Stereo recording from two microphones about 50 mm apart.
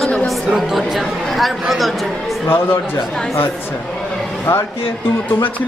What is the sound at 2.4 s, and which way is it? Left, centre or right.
Speech, left.